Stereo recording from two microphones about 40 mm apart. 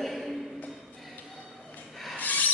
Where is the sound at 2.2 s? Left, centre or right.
Left.